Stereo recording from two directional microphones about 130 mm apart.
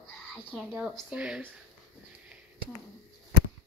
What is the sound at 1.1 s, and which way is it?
Speech, 10° right (ahead or behind).